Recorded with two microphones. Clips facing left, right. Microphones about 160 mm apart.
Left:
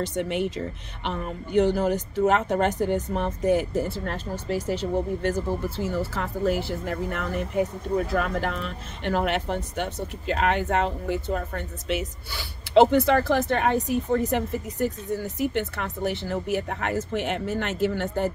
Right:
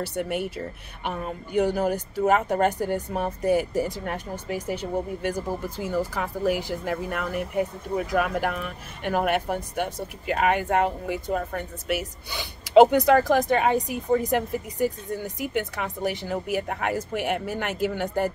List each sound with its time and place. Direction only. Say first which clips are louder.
0.0 s speech: left 2 dB; 10° right (ahead or behind)